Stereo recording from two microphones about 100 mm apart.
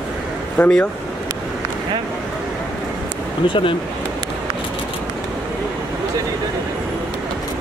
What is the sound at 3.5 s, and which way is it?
Speech, 60° left (ahead or behind).